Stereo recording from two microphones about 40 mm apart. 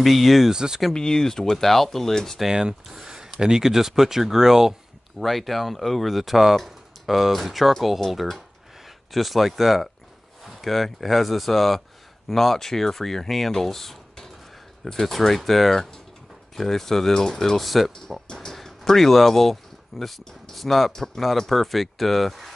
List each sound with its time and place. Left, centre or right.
0.0 s speech: centre
0.5 s speech: centre
0.9 s speech: centre
2.4 s speech: centre
5.2 s speech: centre
17.9 s speech: centre